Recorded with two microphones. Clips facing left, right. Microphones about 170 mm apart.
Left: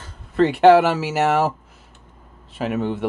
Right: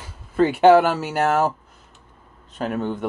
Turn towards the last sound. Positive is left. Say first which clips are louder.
# left 2 dB
turn(degrees=5)  # may be behind; listen again after turning